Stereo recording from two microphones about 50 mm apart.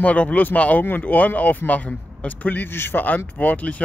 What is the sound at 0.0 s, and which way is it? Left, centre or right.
Speech, left.